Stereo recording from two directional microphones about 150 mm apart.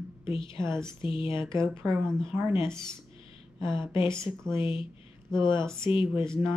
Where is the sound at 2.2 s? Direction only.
35° left (ahead or behind).